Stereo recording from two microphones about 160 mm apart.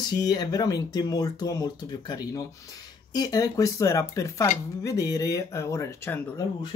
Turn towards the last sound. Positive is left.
turn(degrees=15)  # may be behind; listen again after turning